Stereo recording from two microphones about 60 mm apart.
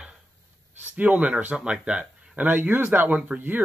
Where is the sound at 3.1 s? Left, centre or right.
Right.